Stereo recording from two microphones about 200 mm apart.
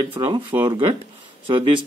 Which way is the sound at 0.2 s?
25° right (ahead or behind).